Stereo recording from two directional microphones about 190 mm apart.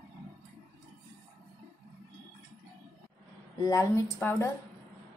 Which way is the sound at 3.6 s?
15° left (ahead or behind).